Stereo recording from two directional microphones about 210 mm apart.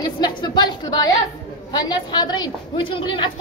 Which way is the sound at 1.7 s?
20° left (ahead or behind).